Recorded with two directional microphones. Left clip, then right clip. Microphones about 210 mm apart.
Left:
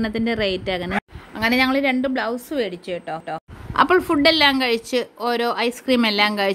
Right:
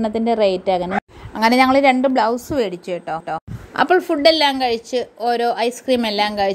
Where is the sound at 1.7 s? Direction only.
Centre (ahead or behind).